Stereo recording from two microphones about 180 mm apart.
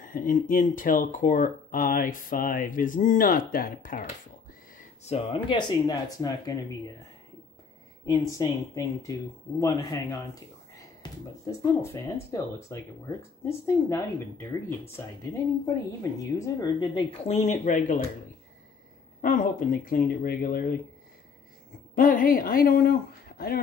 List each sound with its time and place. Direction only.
0.0 s speech: 50° left (ahead or behind)
4.7 s speech: 35° left (ahead or behind); by 6.6 s 20° left (ahead or behind)
8.0 s speech: 20° left (ahead or behind)
16.0 s speech: 20° left (ahead or behind)
17.1 s speech: 35° left (ahead or behind)
19.2 s speech: 50° left (ahead or behind)
21.9 s speech: 50° left (ahead or behind)